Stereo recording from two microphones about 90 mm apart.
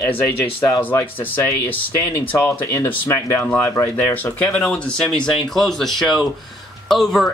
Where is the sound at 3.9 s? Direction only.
20° left (ahead or behind).